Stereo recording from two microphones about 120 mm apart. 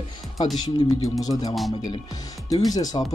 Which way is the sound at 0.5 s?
35° left (ahead or behind).